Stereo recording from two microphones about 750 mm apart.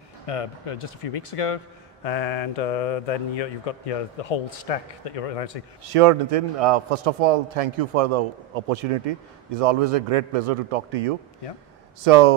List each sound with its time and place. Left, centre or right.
0.3 s speech: left
2.0 s speech: left
5.9 s a man's voice: right